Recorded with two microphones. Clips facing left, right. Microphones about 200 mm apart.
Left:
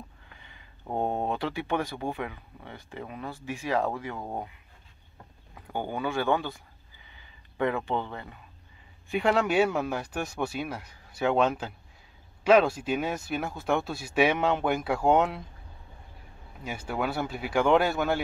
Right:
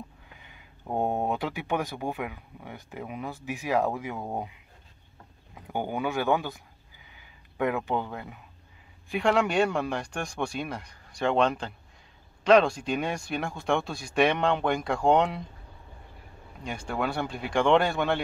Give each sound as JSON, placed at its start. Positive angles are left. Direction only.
{"t": 0.4, "sound": "speech", "side_deg": -10}
{"t": 4.2, "sound": "speech", "side_deg": -25}
{"t": 5.5, "sound": "speech", "side_deg": -15}
{"t": 7.5, "sound": "speech", "side_deg": -10}
{"t": 9.1, "sound": "speech", "side_deg": 0}
{"t": 16.6, "sound": "speech", "side_deg": 5}